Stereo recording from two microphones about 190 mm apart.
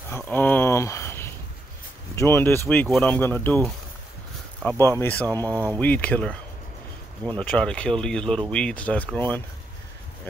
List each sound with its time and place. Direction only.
0.1 s a sound: 10° left (ahead or behind)
2.1 s speech: 15° left (ahead or behind)
4.6 s speech: 10° left (ahead or behind)
5.4 s speech: 20° right (ahead or behind)
5.7 s speech: 10° left (ahead or behind)
7.3 s speech: 5° left (ahead or behind)